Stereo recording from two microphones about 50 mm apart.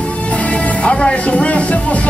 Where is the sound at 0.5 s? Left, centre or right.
Left.